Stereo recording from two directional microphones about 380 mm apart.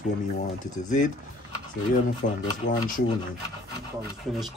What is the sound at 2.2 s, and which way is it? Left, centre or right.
Speech, left.